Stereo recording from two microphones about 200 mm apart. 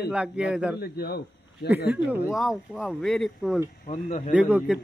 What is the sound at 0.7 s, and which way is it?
Speech, 50° left (ahead or behind).